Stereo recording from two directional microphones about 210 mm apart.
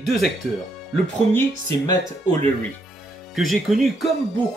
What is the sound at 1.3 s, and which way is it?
Speech, 15° left (ahead or behind).